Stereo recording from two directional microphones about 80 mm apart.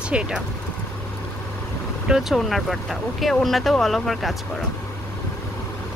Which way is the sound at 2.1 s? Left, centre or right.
Centre.